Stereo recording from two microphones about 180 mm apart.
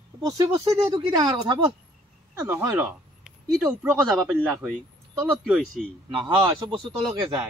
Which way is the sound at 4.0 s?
Centre (ahead or behind).